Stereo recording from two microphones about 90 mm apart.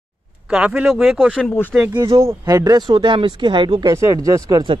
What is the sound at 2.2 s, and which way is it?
Speech, 40° right (ahead or behind).